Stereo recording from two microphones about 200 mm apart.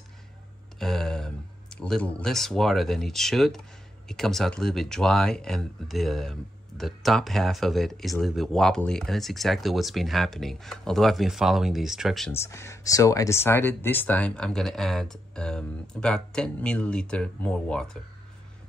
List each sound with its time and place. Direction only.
0.7 s a sound: centre (ahead or behind)
1.8 s speech: 5° left (ahead or behind)
12.3 s speech: 15° left (ahead or behind)